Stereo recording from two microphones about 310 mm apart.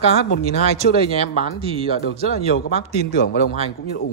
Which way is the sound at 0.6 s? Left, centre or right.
Centre.